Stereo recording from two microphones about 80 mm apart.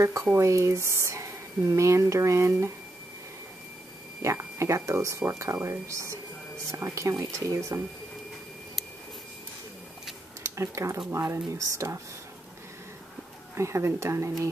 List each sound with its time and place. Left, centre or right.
0.0 s speech: right
4.2 s speech: right
10.4 s speech: right
13.6 s speech: right